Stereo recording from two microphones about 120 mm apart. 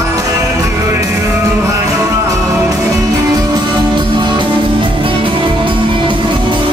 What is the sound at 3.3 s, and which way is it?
Music, 35° right (ahead or behind).